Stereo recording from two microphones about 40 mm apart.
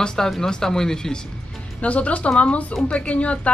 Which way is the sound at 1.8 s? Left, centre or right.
Left.